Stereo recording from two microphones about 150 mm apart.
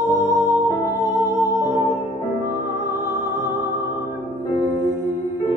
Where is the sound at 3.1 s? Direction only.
15° right (ahead or behind).